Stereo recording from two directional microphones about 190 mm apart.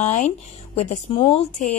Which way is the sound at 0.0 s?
40° left (ahead or behind).